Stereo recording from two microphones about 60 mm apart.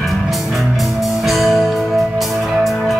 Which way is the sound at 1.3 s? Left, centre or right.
Centre.